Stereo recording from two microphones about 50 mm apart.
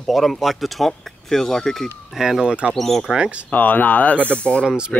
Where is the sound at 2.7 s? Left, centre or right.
Centre.